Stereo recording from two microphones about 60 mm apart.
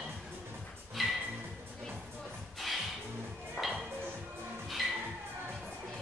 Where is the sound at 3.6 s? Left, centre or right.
Centre.